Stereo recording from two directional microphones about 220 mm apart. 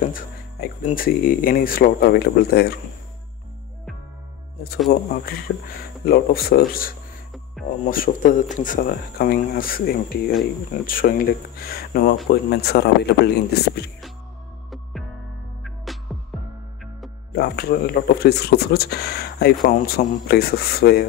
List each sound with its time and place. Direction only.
0.0 s speech: 40° left (ahead or behind)
4.9 s speech: 45° left (ahead or behind)
5.5 s speech: 65° left (ahead or behind)
6.0 s speech: 45° left (ahead or behind)
15.6 s music: centre (ahead or behind)
17.4 s speech: 45° left (ahead or behind)